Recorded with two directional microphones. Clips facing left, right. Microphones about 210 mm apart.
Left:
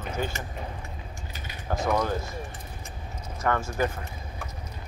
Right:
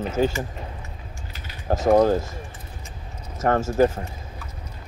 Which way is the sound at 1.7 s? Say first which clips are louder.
Right 9 dB; 40° right (ahead or behind).